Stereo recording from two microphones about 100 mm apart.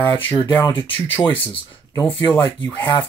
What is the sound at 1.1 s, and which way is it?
Speech, 20° left (ahead or behind).